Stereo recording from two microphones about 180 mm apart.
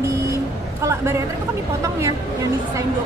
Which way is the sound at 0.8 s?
15° right (ahead or behind).